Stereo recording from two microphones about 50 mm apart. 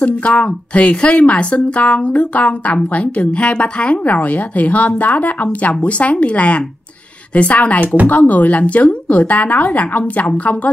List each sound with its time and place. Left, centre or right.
0.0 s speech: left
7.8 s speech: right
8.1 s speech: left